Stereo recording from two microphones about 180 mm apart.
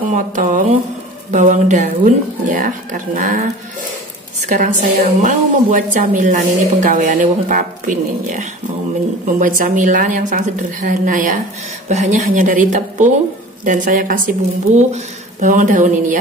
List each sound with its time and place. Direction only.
0.1 s a woman's voice: 45° right (ahead or behind)
4.5 s a woman's voice: 45° right (ahead or behind)